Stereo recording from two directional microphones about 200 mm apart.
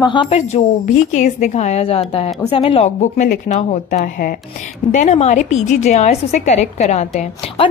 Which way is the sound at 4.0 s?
45° left (ahead or behind).